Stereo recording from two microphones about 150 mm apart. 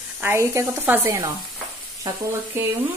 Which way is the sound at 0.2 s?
15° right (ahead or behind).